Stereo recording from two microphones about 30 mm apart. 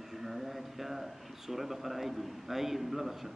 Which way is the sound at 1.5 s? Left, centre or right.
Centre.